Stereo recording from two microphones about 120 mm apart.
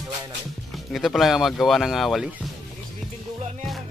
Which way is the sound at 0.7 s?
Centre (ahead or behind).